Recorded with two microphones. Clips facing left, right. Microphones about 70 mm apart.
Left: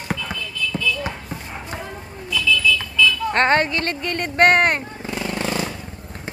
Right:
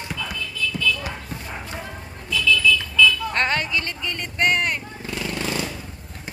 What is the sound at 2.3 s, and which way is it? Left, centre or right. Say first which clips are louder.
Vehicle: even; centre.